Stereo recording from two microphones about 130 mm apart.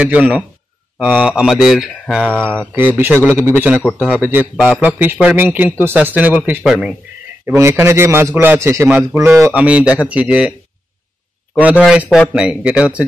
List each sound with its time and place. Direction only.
0.0 s speech: 10° right (ahead or behind)
2.2 s speech: 10° left (ahead or behind)
2.7 s speech: 15° right (ahead or behind)
6.7 s speech: centre (ahead or behind)
7.4 s a man's voice: 20° right (ahead or behind)
11.8 s speech: 5° right (ahead or behind)